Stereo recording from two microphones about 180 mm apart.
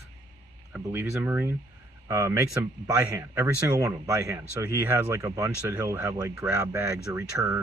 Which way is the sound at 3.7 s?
20° right (ahead or behind).